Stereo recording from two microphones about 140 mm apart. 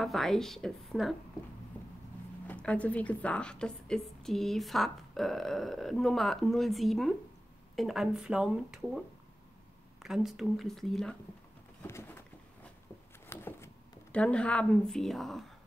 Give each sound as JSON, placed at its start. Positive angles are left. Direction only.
{"t": 0.0, "sound": "a woman's voice", "side_deg": 0}
{"t": 2.4, "sound": "a woman's voice", "side_deg": 10}
{"t": 10.0, "sound": "a woman's voice", "side_deg": -5}
{"t": 13.3, "sound": "a sound", "side_deg": 15}
{"t": 14.1, "sound": "a woman's voice", "side_deg": 10}